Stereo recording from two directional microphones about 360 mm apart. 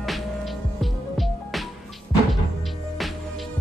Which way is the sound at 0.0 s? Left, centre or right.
Centre.